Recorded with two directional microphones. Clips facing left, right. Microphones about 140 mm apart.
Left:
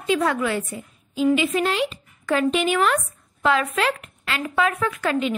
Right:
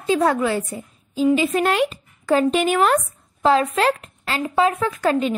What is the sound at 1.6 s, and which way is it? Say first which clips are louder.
Speech: right 4 dB; 50° right (ahead or behind).